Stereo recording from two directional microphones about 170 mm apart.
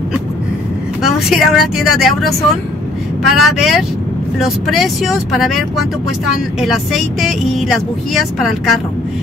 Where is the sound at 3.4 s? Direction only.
Centre (ahead or behind).